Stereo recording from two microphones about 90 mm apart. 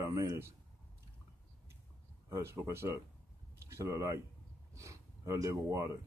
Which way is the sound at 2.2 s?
35° right (ahead or behind).